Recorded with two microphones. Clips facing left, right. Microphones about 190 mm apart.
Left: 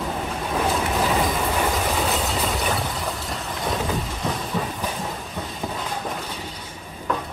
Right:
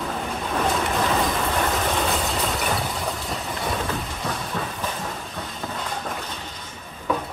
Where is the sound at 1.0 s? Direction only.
5° left (ahead or behind).